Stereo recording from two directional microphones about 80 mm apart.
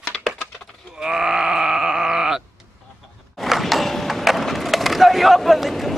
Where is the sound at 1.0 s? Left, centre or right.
Centre.